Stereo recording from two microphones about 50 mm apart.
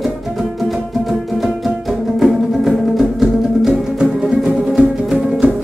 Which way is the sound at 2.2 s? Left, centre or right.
Centre.